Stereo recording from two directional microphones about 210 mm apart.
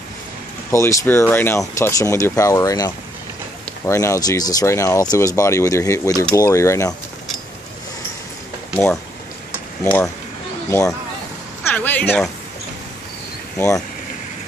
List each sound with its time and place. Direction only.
0.7 s speech: 15° left (ahead or behind)
9.8 s speech: 5° left (ahead or behind)
13.6 s speech: 15° left (ahead or behind)